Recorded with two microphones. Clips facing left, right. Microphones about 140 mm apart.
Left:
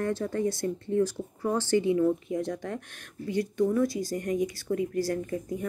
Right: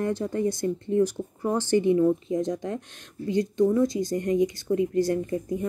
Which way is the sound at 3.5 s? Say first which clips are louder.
Right 3 dB; 20° right (ahead or behind).